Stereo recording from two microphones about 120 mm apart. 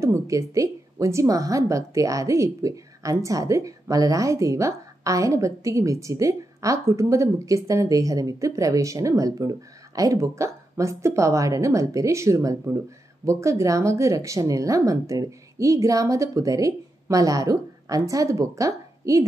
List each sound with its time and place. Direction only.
0.0 s a woman's voice: 25° right (ahead or behind)